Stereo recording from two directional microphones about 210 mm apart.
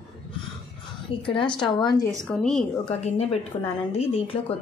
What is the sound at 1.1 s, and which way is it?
Speech, 25° left (ahead or behind).